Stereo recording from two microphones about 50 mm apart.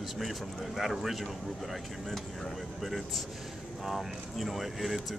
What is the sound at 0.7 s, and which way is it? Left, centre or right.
Speech, centre.